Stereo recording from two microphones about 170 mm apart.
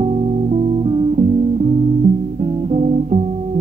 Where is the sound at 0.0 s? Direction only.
35° right (ahead or behind).